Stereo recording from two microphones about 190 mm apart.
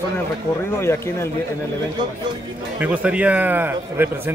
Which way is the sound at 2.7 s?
5° right (ahead or behind).